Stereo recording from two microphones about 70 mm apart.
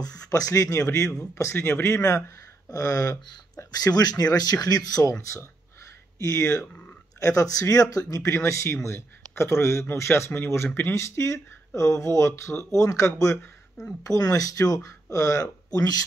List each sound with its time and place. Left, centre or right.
0.3 s speech: left
2.7 s speech: left
6.1 s speech: left